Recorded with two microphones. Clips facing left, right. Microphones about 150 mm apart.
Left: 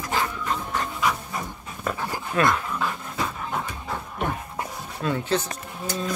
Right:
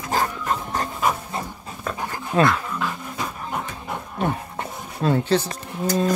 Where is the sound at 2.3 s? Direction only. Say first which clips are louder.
Right 4 dB; 25° right (ahead or behind).